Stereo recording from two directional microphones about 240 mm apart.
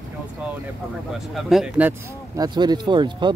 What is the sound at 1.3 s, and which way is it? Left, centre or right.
Speech, centre.